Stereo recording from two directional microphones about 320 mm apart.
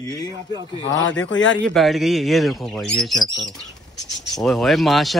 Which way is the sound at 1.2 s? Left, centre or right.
Left.